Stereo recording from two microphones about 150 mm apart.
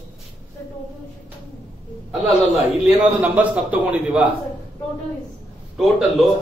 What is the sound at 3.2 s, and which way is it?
A man's voice, 10° right (ahead or behind).